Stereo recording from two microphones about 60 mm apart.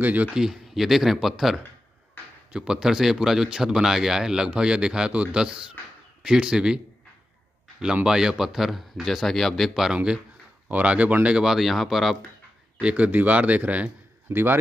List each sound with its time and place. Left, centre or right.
0.0 s speech: right
0.3 s speech: centre
7.8 s speech: centre
9.9 s speech: centre
11.2 s speech: centre
12.7 s speech: right
14.3 s a man's voice: right